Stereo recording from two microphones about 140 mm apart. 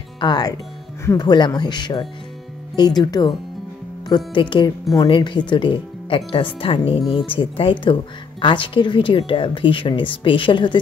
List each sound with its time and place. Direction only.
0.2 s speech: 30° left (ahead or behind)